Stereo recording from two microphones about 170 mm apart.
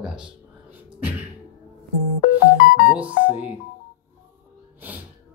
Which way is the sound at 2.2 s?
55° left (ahead or behind).